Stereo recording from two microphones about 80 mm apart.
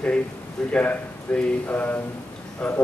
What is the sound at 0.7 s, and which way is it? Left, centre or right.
A man's voice, centre.